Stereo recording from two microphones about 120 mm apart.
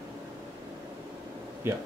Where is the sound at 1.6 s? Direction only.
20° right (ahead or behind).